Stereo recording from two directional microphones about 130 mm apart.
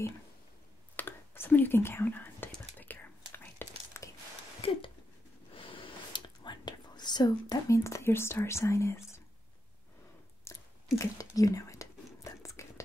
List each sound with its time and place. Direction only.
0.9 s whispering: 15° left (ahead or behind)
4.6 s a sound: 45° left (ahead or behind)
5.5 s whispering: 40° left (ahead or behind); by 9.2 s 20° left (ahead or behind)
10.5 s chewing: 20° left (ahead or behind)
11.0 s whispering: 25° left (ahead or behind)